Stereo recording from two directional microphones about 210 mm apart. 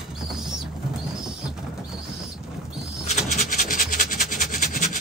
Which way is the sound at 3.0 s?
35° left (ahead or behind).